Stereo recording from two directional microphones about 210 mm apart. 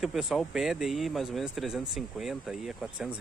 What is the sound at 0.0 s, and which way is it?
Speech, centre (ahead or behind).